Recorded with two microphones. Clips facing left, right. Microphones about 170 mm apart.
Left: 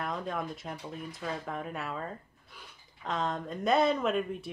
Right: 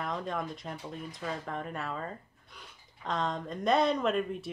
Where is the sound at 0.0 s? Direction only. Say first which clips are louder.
Even; centre (ahead or behind).